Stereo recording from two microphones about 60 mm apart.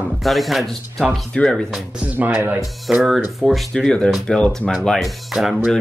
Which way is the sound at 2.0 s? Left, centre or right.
Right.